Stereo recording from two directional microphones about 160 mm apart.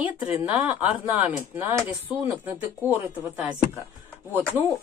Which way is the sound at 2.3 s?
10° right (ahead or behind).